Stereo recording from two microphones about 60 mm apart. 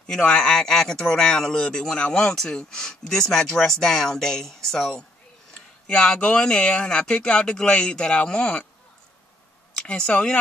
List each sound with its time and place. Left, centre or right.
0.0 s speech: centre
5.5 s speech: centre
9.8 s speech: centre